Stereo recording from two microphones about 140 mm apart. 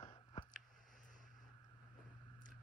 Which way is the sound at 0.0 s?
35° left (ahead or behind).